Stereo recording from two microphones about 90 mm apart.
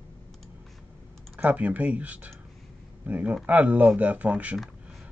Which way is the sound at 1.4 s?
20° right (ahead or behind).